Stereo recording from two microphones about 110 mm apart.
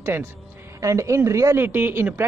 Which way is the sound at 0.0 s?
20° right (ahead or behind).